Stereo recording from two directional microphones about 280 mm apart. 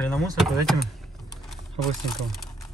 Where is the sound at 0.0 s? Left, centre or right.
Centre.